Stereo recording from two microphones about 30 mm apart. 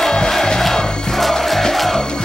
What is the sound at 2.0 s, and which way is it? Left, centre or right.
Crowd, left.